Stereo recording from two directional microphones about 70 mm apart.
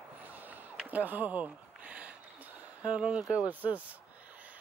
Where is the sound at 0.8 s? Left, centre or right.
Right.